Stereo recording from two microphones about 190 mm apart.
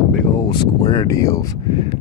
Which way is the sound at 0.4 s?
25° left (ahead or behind).